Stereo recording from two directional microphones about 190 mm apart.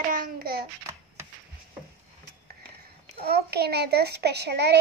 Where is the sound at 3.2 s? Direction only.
60° right (ahead or behind).